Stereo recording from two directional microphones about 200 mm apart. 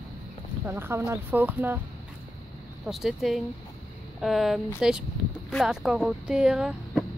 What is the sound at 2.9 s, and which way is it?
Speech, centre (ahead or behind).